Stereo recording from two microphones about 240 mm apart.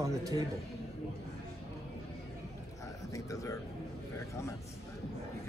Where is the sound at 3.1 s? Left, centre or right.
Centre.